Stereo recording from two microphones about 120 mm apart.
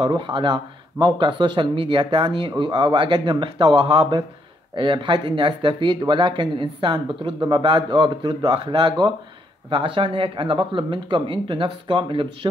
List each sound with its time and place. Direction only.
0.0 s speech: 40° right (ahead or behind)